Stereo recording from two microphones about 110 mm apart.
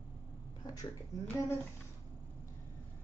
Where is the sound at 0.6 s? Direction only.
35° left (ahead or behind).